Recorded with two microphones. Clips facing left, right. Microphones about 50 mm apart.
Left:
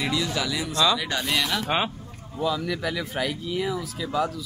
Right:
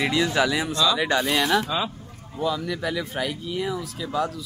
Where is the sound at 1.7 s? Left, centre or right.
Left.